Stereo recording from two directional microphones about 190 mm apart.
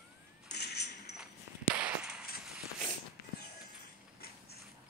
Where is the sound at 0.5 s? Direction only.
60° left (ahead or behind).